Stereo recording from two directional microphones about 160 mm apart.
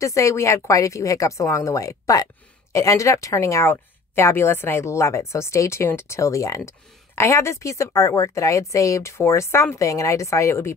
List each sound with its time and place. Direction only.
0.0 s a woman's voice: 20° left (ahead or behind)